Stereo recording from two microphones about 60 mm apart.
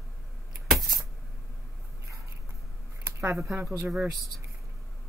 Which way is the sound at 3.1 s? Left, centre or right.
Right.